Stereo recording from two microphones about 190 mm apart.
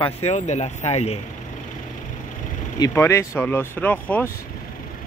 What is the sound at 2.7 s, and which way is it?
Speech, 15° left (ahead or behind).